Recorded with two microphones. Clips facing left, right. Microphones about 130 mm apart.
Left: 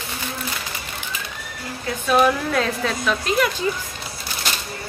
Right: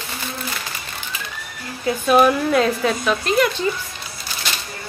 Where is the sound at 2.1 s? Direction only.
10° right (ahead or behind).